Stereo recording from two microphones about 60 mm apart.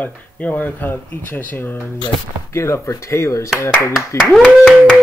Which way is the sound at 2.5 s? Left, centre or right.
Left.